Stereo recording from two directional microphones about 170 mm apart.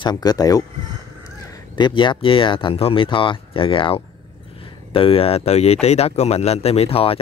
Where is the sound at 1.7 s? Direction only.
25° left (ahead or behind).